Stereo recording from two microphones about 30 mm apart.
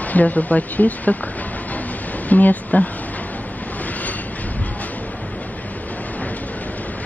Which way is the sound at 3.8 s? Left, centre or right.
Left.